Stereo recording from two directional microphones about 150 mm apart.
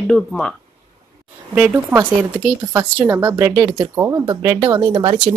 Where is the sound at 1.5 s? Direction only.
10° right (ahead or behind).